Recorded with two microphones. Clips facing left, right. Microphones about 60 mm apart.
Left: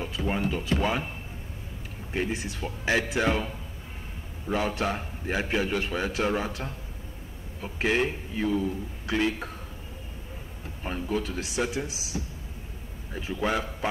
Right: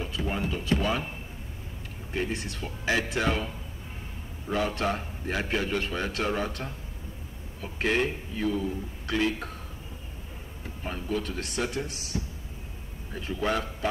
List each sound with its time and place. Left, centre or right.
0.5 s speech: left
2.1 s a man's voice: centre
4.5 s a man's voice: centre
7.8 s a man's voice: centre
10.8 s a man's voice: centre
13.4 s a man's voice: centre